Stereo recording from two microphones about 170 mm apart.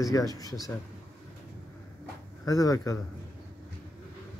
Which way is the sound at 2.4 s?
20° left (ahead or behind).